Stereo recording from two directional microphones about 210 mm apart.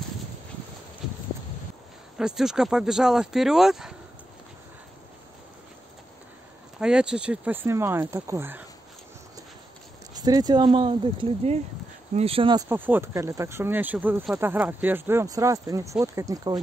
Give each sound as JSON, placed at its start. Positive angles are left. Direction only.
{"t": 1.0, "sound": "clip-clop", "side_deg": 0}
{"t": 2.1, "sound": "speech", "side_deg": -5}
{"t": 6.8, "sound": "speech", "side_deg": -5}
{"t": 10.2, "sound": "speech", "side_deg": -20}
{"t": 12.6, "sound": "speech", "side_deg": -10}